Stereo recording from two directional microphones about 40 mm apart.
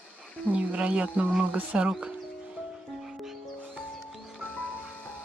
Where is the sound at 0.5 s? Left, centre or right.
Right.